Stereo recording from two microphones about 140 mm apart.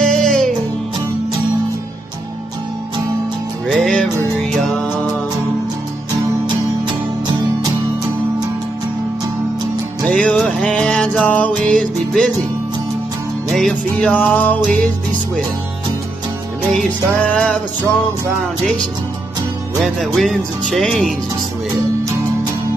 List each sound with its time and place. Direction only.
0.0 s music: 5° left (ahead or behind)
3.6 s music: 5° left (ahead or behind)
6.4 s music: 30° right (ahead or behind)
10.0 s music: 5° left (ahead or behind)
13.5 s speech: centre (ahead or behind)
14.3 s music: 10° left (ahead or behind)
14.6 s speech: 5° left (ahead or behind)
17.2 s music: 10° left (ahead or behind)
19.8 s speech: centre (ahead or behind)